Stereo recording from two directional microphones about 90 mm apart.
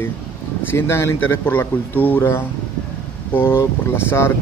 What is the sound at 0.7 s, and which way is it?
Speech, 30° left (ahead or behind).